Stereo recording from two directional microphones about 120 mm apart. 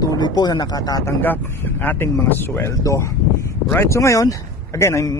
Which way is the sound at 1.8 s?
15° left (ahead or behind).